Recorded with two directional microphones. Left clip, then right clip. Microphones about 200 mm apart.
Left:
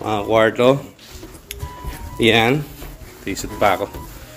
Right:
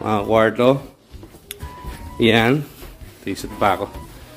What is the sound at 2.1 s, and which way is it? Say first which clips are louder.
Speech: left 1 dB; 30° right (ahead or behind).